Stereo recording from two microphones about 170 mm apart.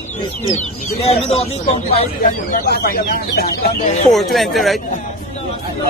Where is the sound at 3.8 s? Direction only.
45° left (ahead or behind).